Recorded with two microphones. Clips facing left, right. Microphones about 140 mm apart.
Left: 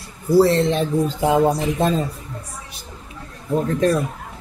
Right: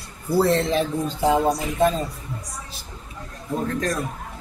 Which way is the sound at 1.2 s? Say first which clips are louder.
Left 1 dB; 20° left (ahead or behind).